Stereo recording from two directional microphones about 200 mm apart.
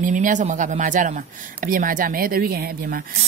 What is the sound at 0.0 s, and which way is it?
A woman's voice, 40° right (ahead or behind).